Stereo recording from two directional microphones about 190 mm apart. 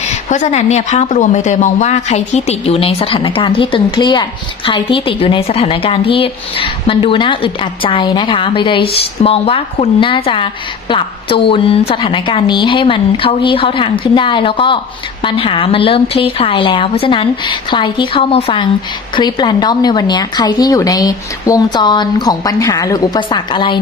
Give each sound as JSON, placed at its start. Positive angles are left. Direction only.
{"t": 0.3, "sound": "speech", "side_deg": 40}